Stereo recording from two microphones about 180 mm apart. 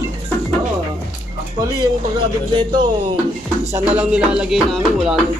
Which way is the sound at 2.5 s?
25° right (ahead or behind).